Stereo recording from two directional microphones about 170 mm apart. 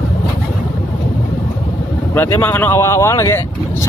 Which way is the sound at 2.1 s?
10° left (ahead or behind).